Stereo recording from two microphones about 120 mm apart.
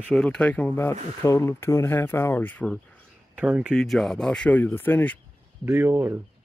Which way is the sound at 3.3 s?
10° right (ahead or behind).